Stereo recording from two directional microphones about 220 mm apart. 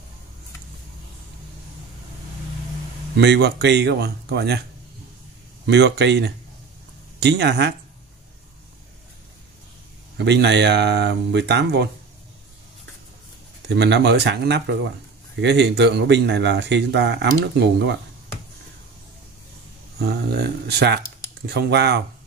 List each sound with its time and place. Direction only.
3.2 s speech: 50° right (ahead or behind)
5.7 s speech: 50° right (ahead or behind)
10.1 s speech: 50° right (ahead or behind)
13.7 s speech: 50° right (ahead or behind)
20.0 s speech: 50° right (ahead or behind)